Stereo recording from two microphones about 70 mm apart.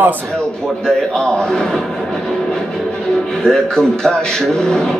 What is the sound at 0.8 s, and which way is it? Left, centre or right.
Speech, centre.